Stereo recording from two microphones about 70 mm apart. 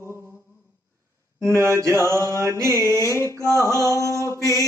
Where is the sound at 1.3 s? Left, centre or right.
Right.